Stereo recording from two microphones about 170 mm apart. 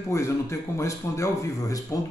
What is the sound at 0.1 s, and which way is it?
A man's voice, 15° left (ahead or behind).